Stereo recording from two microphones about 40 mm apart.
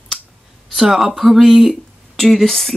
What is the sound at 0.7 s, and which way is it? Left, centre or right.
A woman's voice, centre.